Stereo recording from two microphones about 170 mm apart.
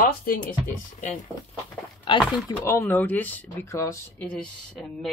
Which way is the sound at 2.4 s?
15° left (ahead or behind).